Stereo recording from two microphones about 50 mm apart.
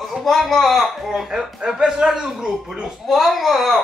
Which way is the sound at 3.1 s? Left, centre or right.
Centre.